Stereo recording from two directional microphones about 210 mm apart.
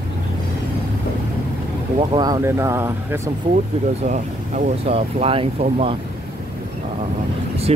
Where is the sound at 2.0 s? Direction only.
20° right (ahead or behind).